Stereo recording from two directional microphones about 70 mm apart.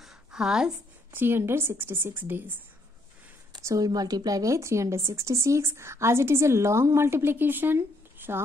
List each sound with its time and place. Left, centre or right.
0.0 s a sound: centre
1.1 s speech: right
3.6 s speech: right